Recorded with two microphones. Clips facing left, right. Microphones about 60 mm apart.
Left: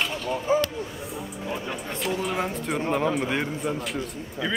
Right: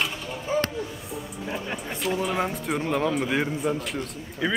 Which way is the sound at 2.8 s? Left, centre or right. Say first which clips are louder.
Left 1 dB; centre.